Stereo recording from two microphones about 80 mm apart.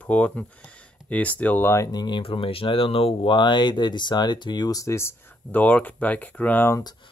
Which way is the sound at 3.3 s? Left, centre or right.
Left.